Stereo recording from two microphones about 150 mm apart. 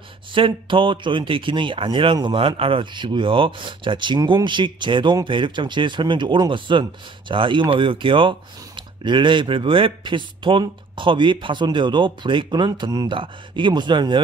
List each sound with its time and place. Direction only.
0.3 s speech: 35° right (ahead or behind)